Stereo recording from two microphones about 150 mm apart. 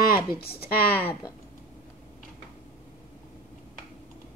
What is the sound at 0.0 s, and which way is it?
Speech, 85° left.